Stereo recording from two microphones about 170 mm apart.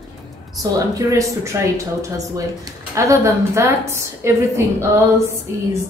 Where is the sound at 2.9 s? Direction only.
15° right (ahead or behind).